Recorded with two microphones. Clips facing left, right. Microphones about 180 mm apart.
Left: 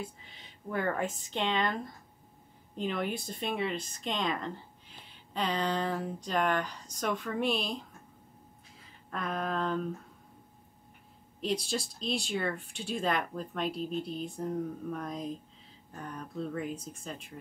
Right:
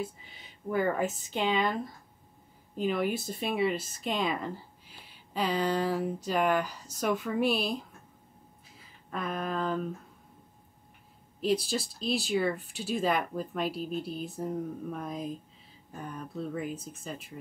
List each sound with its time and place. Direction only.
0.0 s speech: 5° right (ahead or behind)
11.4 s speech: centre (ahead or behind)